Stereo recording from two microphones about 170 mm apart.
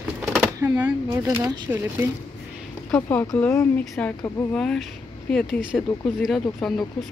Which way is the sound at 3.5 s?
10° left (ahead or behind).